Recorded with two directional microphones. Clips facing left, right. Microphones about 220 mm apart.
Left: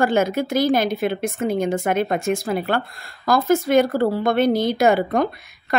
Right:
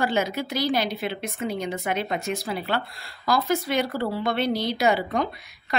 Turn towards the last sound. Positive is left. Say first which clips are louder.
# left 6 dB
turn(degrees=50)  # may be behind; listen again after turning